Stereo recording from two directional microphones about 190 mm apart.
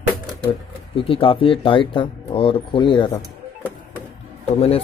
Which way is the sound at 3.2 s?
10° right (ahead or behind).